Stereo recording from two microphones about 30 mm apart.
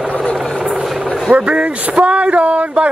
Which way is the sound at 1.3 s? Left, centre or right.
Right.